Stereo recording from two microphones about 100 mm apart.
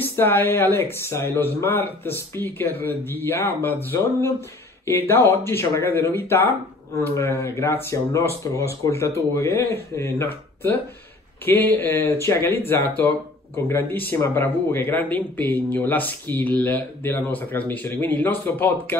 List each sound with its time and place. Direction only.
0.0 s speech: 20° left (ahead or behind)